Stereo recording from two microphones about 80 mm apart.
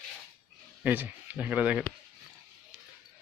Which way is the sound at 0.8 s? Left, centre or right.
Right.